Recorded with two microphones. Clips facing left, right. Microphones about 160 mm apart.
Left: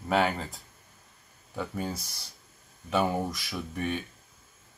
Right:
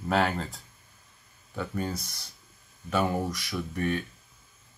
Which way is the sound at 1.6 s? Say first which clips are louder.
Right 1 dB; 5° left (ahead or behind).